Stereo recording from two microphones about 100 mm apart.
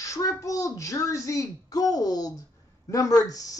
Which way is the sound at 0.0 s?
35° left (ahead or behind).